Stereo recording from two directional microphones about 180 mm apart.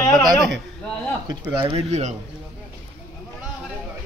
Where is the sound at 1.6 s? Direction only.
30° right (ahead or behind).